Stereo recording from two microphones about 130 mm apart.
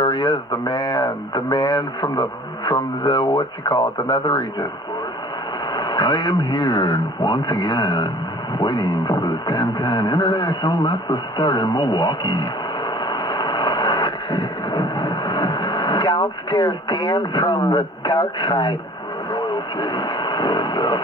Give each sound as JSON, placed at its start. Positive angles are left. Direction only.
{"t": 0.0, "sound": "speech", "side_deg": 35}
{"t": 5.7, "sound": "speech", "side_deg": 35}
{"t": 13.0, "sound": "vehicle", "side_deg": 35}
{"t": 19.3, "sound": "radio", "side_deg": 35}